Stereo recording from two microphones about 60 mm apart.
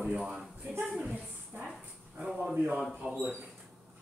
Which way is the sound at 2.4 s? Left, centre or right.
Right.